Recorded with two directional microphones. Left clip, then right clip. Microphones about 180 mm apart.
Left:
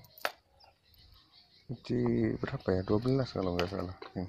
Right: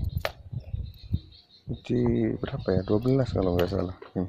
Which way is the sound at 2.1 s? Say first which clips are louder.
Right 4 dB; centre (ahead or behind).